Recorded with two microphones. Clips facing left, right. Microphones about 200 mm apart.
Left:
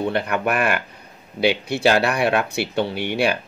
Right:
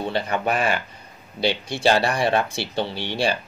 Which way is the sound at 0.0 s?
60° left (ahead or behind).